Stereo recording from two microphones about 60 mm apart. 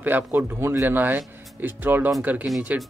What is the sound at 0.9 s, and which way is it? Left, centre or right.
Speech, right.